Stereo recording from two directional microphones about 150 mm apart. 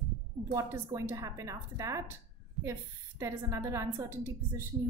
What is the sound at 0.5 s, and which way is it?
A woman's voice, 15° right (ahead or behind).